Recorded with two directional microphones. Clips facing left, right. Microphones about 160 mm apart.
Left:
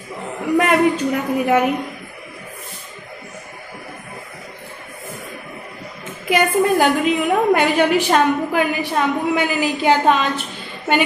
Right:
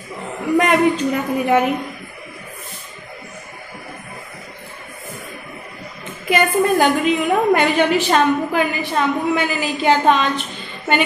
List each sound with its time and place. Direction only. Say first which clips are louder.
0.6 s a woman's voice: even; 5° left (ahead or behind)
6.2 s a woman's voice: even; 5° left (ahead or behind)